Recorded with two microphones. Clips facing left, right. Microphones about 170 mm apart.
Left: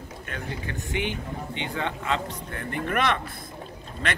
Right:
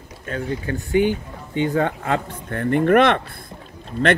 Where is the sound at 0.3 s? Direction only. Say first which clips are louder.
Right 10 dB; 35° right (ahead or behind).